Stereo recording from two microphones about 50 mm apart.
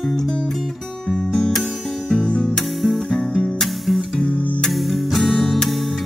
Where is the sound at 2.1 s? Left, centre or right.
Centre.